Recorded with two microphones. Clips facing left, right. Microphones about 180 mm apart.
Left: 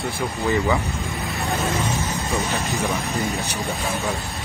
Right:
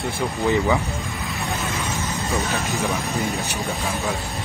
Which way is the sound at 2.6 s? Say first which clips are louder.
Even; 15° left (ahead or behind).